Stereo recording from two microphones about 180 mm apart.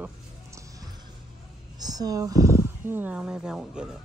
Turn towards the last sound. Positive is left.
turn(degrees=-5)  # may be behind; listen again after turning